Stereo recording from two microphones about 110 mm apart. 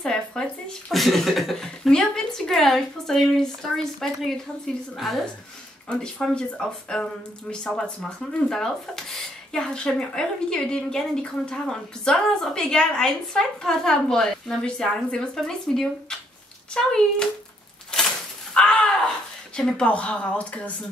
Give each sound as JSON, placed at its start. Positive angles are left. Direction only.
{"t": 0.0, "sound": "speech", "side_deg": 5}
{"t": 17.9, "sound": "a sound", "side_deg": 5}
{"t": 19.5, "sound": "speech", "side_deg": 10}